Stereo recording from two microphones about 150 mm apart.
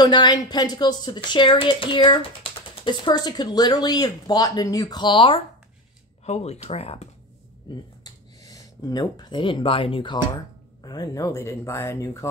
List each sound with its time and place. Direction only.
0.0 s a woman's voice: 30° left (ahead or behind)
6.2 s speech: 45° left (ahead or behind)
7.7 s speech: 30° left (ahead or behind)